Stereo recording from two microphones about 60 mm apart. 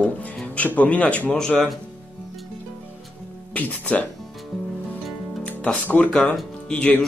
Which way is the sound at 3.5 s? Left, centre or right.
Left.